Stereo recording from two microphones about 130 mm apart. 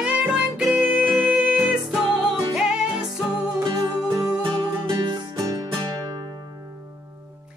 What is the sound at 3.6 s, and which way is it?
Music, 30° right (ahead or behind).